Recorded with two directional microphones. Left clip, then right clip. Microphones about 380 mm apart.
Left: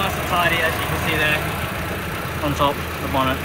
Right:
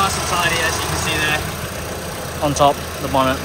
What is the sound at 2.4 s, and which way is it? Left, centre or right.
Speech, centre.